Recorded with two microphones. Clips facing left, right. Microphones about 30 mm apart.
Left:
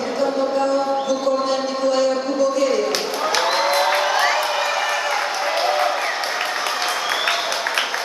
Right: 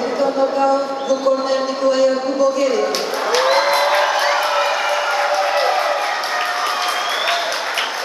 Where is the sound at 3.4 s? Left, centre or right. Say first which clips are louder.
Right 4 dB; centre.